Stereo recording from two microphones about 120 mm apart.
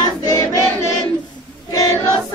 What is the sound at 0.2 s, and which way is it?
Choir, 30° left (ahead or behind).